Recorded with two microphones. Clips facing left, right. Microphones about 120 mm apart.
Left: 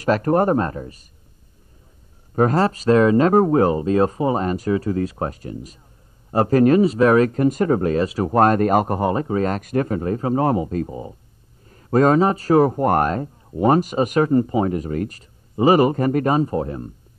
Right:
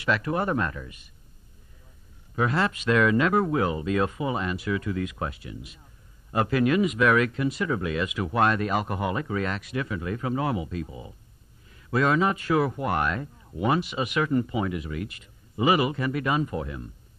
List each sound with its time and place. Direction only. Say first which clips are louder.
0.0 s speech: left 9 dB; 45° left (ahead or behind)
2.3 s speech: left 8 dB; 40° left (ahead or behind)